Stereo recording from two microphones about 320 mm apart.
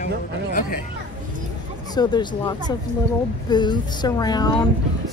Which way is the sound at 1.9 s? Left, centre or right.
Centre.